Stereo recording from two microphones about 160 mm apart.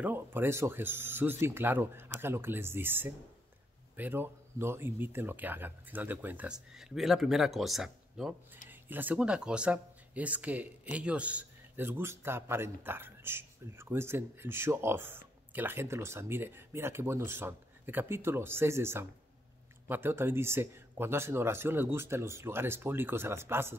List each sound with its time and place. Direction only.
0.0 s speech: 15° right (ahead or behind)